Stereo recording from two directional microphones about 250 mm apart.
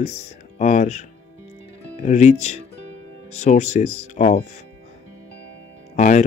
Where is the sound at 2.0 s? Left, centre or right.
Left.